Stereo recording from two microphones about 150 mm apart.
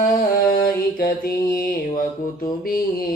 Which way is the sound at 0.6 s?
80° left.